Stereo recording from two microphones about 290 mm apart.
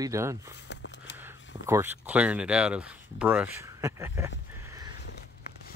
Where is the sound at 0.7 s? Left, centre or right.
Left.